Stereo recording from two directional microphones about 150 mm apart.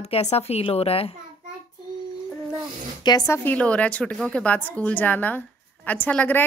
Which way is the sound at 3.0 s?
20° left (ahead or behind).